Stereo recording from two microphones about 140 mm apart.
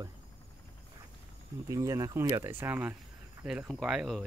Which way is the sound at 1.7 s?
25° right (ahead or behind).